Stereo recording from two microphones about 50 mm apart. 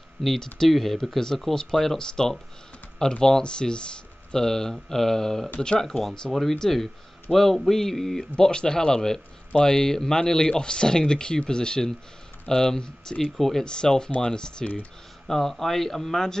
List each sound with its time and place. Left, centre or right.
0.2 s speech: centre
8.4 s speech: centre
13.2 s speech: centre